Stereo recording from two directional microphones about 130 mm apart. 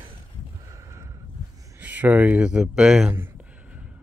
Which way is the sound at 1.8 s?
10° right (ahead or behind).